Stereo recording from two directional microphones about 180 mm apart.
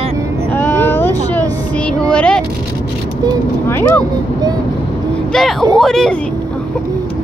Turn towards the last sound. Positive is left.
turn(degrees=0)  # may be behind; listen again after turning